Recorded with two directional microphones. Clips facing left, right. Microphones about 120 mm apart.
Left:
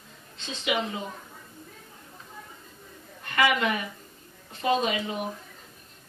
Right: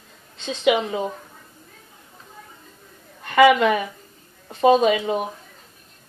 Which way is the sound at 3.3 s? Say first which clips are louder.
Right 10 dB; 90° right.